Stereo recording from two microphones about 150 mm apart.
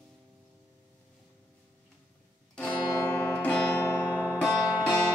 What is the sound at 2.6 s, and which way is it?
Music, 10° left (ahead or behind).